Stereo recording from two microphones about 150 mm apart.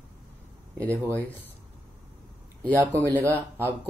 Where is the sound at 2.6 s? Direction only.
10° right (ahead or behind).